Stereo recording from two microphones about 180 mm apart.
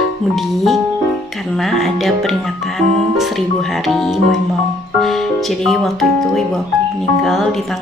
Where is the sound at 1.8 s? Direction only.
Centre (ahead or behind).